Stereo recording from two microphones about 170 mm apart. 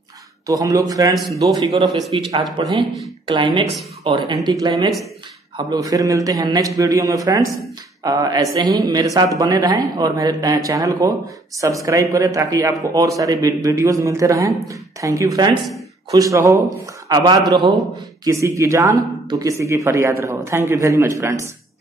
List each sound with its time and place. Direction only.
0.5 s speech: 20° right (ahead or behind)